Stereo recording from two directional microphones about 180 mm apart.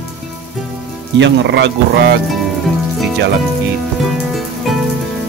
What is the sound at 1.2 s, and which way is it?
Speech, 75° right (ahead or behind).